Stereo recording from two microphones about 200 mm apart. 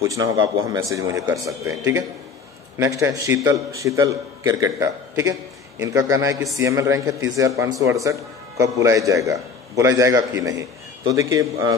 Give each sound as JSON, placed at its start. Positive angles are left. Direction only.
{"t": 0.0, "sound": "a man's voice", "side_deg": -15}
{"t": 2.8, "sound": "a man's voice", "side_deg": -15}